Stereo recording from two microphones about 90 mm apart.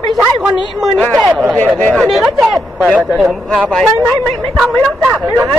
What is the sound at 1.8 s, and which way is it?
Speech, 10° left (ahead or behind).